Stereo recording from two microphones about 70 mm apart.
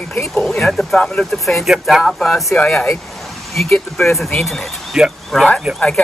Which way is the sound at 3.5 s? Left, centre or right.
Centre.